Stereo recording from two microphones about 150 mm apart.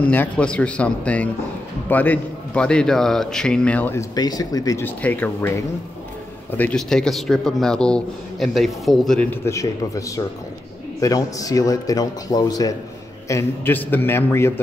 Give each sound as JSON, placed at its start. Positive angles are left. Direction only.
{"t": 0.0, "sound": "speech", "side_deg": 10}
{"t": 4.1, "sound": "a man's voice", "side_deg": 25}